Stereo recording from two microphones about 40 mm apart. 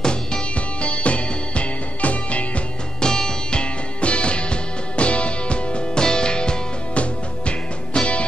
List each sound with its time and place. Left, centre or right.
0.0 s music: centre
0.6 s music: left
3.0 s music: centre
4.0 s music: left